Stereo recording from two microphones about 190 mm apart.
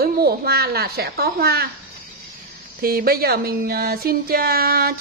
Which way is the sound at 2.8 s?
50° right (ahead or behind).